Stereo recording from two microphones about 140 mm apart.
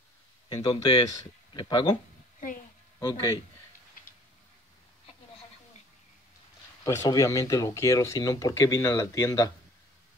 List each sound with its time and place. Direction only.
0.5 s speech: 30° left (ahead or behind)
3.0 s speech: 20° left (ahead or behind)
6.8 s speech: 20° left (ahead or behind)